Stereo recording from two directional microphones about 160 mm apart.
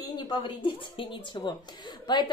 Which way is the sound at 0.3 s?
30° left (ahead or behind).